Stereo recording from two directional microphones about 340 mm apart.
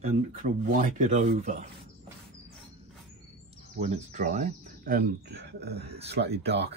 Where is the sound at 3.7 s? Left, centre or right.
Centre.